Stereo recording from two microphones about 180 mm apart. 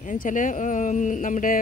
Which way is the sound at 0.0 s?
45° left (ahead or behind).